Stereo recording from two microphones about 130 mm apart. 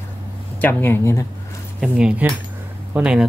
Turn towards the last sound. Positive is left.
turn(degrees=-5)  # may be behind; listen again after turning